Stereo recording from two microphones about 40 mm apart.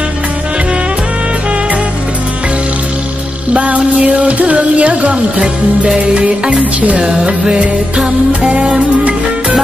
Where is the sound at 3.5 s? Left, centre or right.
Right.